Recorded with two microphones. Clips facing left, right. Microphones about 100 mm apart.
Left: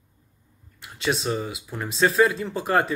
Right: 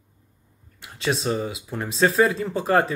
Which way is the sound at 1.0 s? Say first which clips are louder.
Right 1 dB; 35° right (ahead or behind).